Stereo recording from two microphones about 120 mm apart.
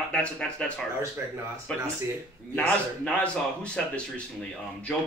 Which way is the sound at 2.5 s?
10° left (ahead or behind).